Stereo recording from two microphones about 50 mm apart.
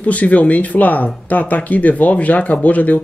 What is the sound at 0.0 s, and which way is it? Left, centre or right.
Speech, left.